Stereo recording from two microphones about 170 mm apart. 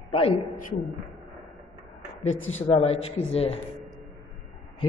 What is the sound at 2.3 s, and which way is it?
Speech, 35° left (ahead or behind).